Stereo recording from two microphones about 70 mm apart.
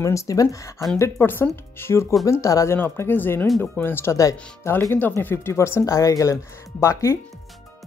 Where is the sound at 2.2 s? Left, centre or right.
Left.